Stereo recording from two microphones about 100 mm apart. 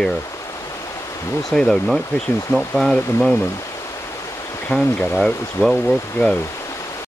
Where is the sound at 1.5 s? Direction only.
5° left (ahead or behind).